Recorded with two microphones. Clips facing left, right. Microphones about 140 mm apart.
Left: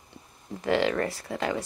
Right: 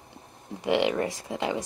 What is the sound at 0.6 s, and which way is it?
Speech, 15° right (ahead or behind).